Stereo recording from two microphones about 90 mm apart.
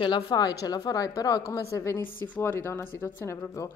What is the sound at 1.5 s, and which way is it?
Speech, 35° left (ahead or behind).